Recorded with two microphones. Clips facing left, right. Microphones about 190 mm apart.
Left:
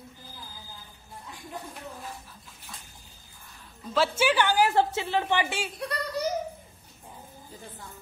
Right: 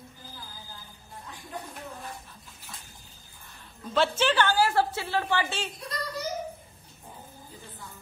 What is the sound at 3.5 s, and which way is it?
A woman's voice, 5° left (ahead or behind).